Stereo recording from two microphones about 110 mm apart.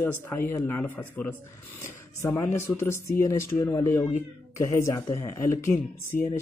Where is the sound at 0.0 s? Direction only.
20° left (ahead or behind).